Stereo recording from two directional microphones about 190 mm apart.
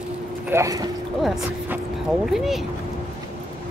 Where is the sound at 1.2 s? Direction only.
Centre (ahead or behind).